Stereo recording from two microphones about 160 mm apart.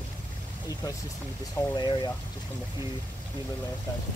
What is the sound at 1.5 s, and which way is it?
Speech, 25° left (ahead or behind).